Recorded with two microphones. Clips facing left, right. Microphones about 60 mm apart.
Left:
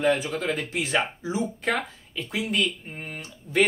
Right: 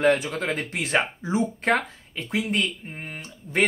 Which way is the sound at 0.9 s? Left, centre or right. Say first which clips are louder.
Right 4 dB; right.